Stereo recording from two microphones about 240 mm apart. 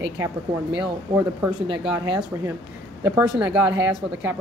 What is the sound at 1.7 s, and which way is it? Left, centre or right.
Speech, centre.